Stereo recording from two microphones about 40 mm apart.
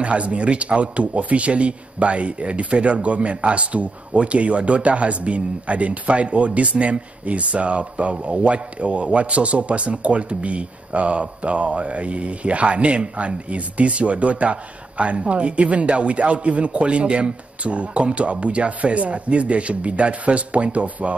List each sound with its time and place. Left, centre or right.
0.0 s a man's voice: right